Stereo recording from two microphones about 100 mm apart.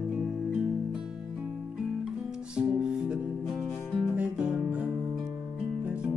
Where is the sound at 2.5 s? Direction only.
10° right (ahead or behind).